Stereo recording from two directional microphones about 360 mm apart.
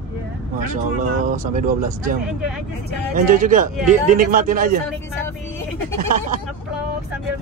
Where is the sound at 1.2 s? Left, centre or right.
Right.